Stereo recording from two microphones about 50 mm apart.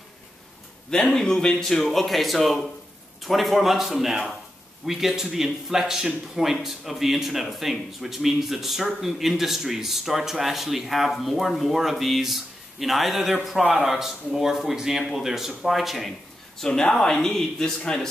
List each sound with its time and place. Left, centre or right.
0.8 s speech: centre
16.5 s speech: centre